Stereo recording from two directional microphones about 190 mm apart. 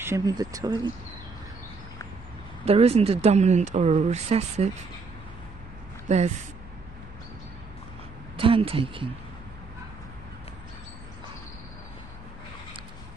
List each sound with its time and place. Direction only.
0.0 s speech: 15° right (ahead or behind)
2.6 s speech: 35° right (ahead or behind)
6.0 s speech: 35° right (ahead or behind)
8.4 s speech: 30° right (ahead or behind)